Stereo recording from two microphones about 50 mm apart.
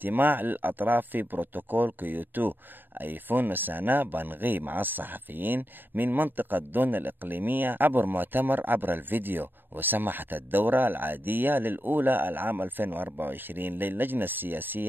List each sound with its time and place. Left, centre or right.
0.0 s speech: right